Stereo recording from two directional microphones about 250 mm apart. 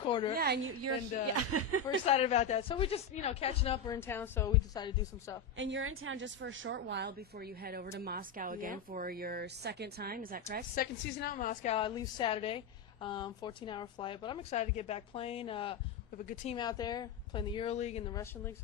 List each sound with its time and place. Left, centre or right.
0.0 s a woman's voice: centre
1.2 s speech: right
2.0 s a woman's voice: left
5.6 s a woman's voice: right
10.7 s a woman's voice: left